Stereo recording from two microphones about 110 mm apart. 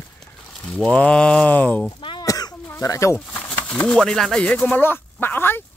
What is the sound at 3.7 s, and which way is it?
A man's voice, 10° left (ahead or behind).